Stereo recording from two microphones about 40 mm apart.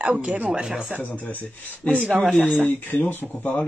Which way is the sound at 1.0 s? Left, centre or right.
Left.